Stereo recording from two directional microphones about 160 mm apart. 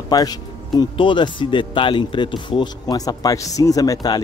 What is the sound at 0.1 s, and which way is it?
Speech, 25° left (ahead or behind).